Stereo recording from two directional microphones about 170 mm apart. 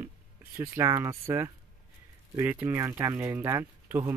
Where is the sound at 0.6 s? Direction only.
15° right (ahead or behind).